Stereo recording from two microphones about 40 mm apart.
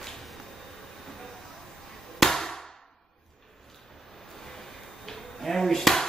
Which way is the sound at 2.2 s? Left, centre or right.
Centre.